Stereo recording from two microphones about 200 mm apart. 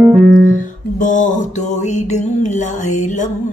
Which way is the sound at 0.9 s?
40° left (ahead or behind).